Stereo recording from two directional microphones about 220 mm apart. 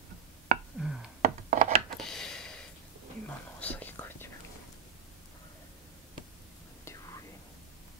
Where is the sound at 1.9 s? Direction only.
Centre (ahead or behind).